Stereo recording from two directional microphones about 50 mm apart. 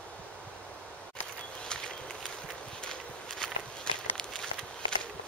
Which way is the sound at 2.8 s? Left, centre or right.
Centre.